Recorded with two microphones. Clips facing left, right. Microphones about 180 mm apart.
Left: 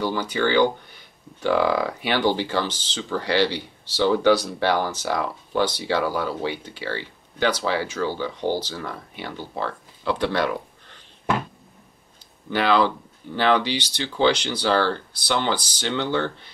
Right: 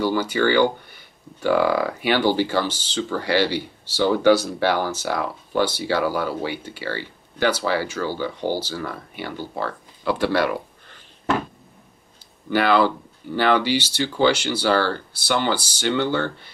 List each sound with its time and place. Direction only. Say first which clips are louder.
0.0 s speech: right 3 dB; 5° right (ahead or behind)
12.5 s speech: right 2 dB; 5° right (ahead or behind)